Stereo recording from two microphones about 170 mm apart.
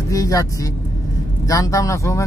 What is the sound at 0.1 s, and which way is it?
Speech, 20° left (ahead or behind).